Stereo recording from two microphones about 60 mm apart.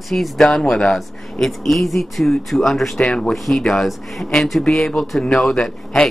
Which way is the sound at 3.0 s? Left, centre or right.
Centre.